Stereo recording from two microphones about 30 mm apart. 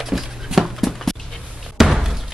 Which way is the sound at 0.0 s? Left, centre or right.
Centre.